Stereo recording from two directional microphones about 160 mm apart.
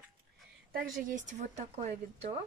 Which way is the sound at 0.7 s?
55° right (ahead or behind).